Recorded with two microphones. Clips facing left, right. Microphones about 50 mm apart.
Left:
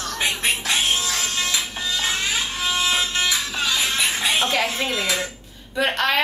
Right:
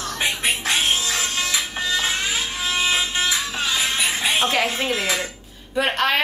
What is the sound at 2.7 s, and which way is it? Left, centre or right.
Music, right.